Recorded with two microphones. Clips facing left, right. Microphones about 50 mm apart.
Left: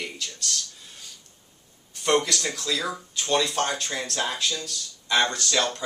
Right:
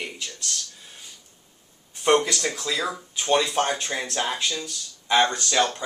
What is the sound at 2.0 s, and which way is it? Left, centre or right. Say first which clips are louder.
Speech: right 3 dB; centre.